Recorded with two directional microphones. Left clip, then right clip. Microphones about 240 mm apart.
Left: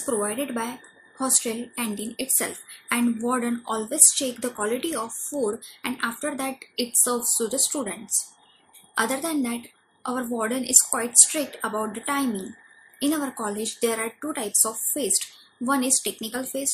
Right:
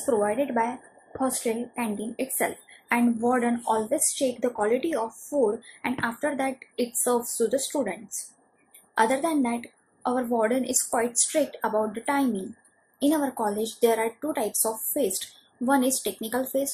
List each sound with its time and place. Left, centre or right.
0.0 s speech: left